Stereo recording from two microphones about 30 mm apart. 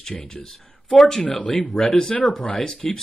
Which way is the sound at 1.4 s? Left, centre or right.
Left.